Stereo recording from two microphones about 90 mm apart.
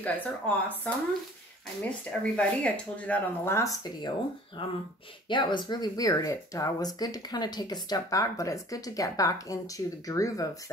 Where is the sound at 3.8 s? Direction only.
55° left (ahead or behind).